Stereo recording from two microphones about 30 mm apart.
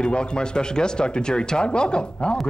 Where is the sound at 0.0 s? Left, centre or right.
Left.